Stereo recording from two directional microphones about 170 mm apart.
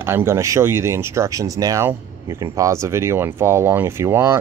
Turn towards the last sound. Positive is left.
turn(degrees=-15)  # may be behind; listen again after turning